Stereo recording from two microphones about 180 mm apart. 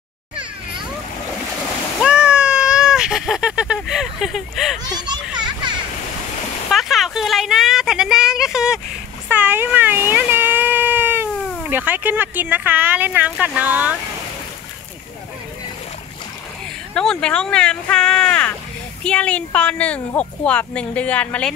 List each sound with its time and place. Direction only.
2.0 s vehicle: 5° right (ahead or behind)
4.9 s children playing: 25° right (ahead or behind)
6.7 s speech: centre (ahead or behind)
9.3 s a sound: 10° right (ahead or behind)
11.4 s cat: centre (ahead or behind)
11.7 s speech: 10° right (ahead or behind)
16.9 s speech: 5° left (ahead or behind)